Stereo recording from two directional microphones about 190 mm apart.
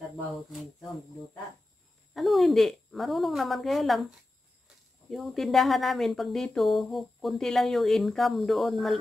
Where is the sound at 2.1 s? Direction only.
Centre (ahead or behind).